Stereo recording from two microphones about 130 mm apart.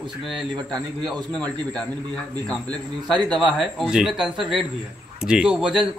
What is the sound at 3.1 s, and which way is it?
Speech, 35° right (ahead or behind).